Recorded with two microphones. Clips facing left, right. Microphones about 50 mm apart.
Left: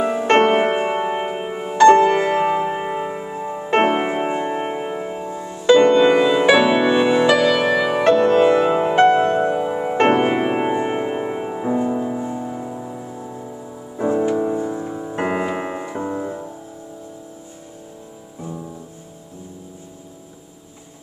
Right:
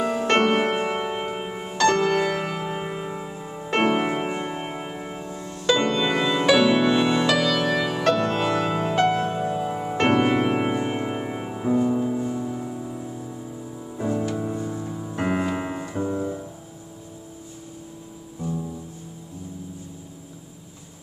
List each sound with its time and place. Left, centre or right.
0.0 s music: left
1.8 s music: left; by 5.7 s centre
5.7 s music: left